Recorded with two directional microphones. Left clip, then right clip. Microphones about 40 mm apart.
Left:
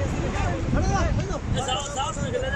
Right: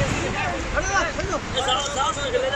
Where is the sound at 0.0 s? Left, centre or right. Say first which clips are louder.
Right 5 dB; centre.